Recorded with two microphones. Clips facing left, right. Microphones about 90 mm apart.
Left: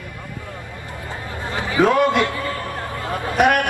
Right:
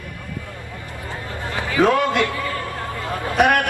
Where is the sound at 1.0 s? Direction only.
20° left (ahead or behind).